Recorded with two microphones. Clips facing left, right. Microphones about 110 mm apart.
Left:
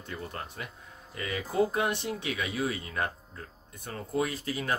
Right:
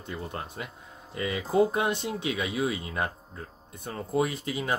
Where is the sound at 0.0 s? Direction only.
20° right (ahead or behind).